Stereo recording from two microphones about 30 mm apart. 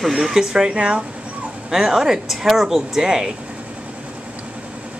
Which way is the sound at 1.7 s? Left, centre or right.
Centre.